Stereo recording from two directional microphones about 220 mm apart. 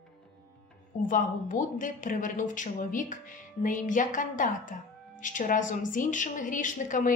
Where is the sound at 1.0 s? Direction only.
35° left (ahead or behind).